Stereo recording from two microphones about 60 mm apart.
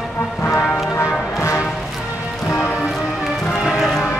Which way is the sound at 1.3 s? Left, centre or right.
Left.